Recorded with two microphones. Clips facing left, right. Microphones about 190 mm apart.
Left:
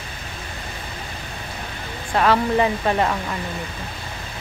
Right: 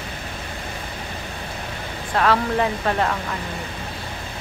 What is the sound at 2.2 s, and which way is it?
Speech, 5° left (ahead or behind).